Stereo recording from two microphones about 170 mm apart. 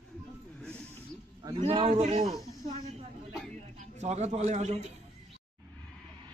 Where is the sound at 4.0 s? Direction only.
40° right (ahead or behind).